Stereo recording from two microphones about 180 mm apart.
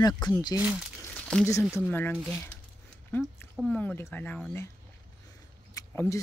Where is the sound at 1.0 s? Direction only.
5° left (ahead or behind).